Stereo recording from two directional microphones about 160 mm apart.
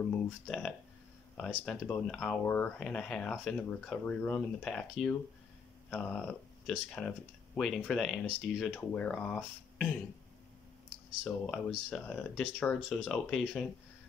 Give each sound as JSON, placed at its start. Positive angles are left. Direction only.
{"t": 0.1, "sound": "speech", "side_deg": 5}
{"t": 11.2, "sound": "speech", "side_deg": 5}